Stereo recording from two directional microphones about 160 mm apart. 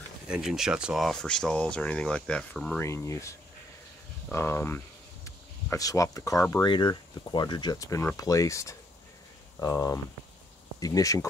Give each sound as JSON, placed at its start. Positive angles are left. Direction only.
{"t": 0.3, "sound": "speech", "side_deg": 0}
{"t": 2.8, "sound": "speech", "side_deg": 15}